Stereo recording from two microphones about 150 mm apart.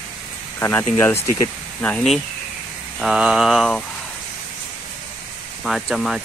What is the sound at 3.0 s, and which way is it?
Mantra, 5° right (ahead or behind).